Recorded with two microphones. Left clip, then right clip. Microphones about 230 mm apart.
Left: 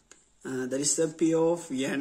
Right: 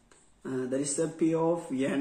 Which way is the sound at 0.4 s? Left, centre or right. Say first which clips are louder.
Left 1 dB; left.